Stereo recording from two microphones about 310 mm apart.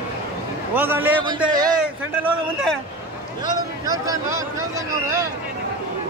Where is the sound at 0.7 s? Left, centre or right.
Centre.